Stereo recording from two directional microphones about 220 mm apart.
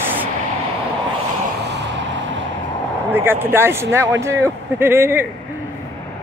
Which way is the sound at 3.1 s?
10° right (ahead or behind).